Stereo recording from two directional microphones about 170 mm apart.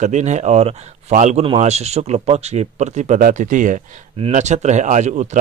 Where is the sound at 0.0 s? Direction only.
45° right (ahead or behind).